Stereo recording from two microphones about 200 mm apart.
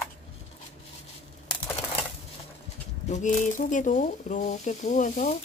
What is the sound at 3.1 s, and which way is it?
Speech, 40° left (ahead or behind).